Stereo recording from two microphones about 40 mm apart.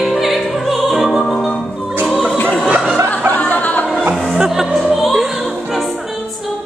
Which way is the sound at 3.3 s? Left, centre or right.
Left.